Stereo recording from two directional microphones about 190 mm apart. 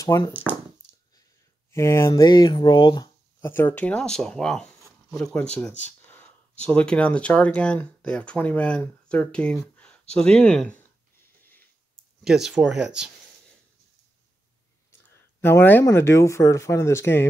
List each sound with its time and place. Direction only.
0.0 s speech: 15° left (ahead or behind)
0.3 s speech: 10° right (ahead or behind)
1.7 s speech: 15° left (ahead or behind)
12.2 s speech: 5° right (ahead or behind)
15.4 s speech: 10° left (ahead or behind)